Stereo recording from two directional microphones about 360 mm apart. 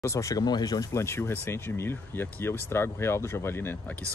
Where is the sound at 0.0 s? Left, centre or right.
Centre.